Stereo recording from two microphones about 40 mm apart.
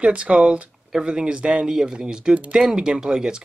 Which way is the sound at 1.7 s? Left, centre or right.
Centre.